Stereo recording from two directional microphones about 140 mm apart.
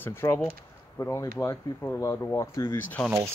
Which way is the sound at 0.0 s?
20° left (ahead or behind).